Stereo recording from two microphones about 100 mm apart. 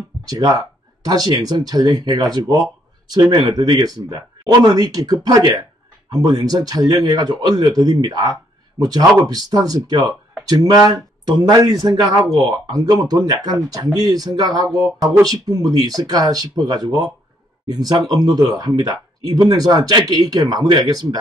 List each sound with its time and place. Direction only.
0.3 s speech: 45° right (ahead or behind)